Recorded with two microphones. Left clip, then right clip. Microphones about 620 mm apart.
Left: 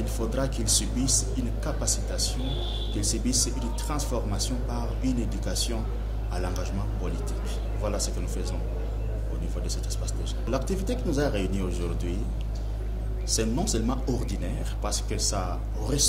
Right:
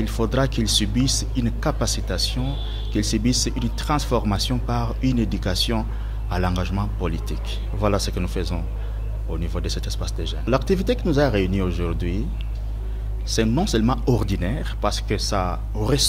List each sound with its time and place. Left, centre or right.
0.0 s speech: right
9.6 s speech: right
13.3 s speech: right